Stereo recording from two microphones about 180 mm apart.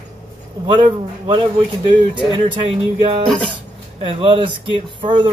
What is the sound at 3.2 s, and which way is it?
Speech, 5° left (ahead or behind).